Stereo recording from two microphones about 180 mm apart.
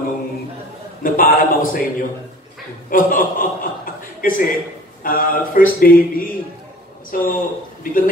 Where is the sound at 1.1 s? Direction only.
50° left (ahead or behind).